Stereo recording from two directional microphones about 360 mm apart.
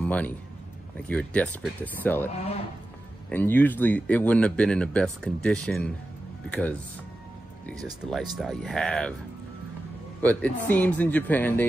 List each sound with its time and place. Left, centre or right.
0.0 s a sound: centre
1.0 s speech: centre
2.3 s speech: centre
3.3 s speech: centre
7.8 s speech: centre
10.2 s speech: centre